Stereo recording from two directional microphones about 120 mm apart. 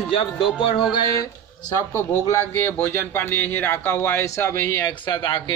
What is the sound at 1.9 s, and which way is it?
Speech, 20° left (ahead or behind).